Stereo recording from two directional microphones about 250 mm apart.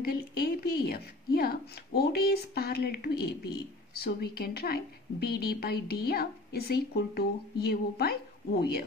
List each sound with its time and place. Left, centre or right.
0.0 s a woman's voice: left